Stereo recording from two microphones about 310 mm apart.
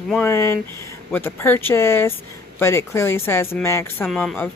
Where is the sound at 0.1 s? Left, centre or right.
Centre.